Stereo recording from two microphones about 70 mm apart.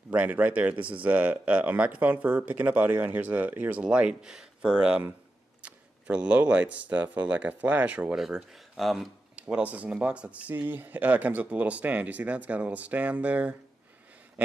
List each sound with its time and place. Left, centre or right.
0.1 s speech: right
8.7 s speech: centre
9.3 s speech: centre
10.5 s speech: right